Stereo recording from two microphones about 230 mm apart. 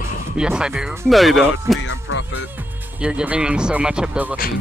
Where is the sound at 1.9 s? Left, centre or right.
Left.